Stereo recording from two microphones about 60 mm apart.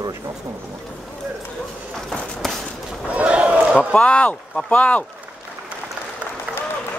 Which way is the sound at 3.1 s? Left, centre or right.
Right.